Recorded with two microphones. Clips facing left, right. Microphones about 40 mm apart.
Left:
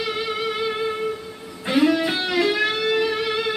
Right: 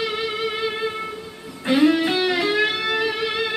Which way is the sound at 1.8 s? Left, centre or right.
Centre.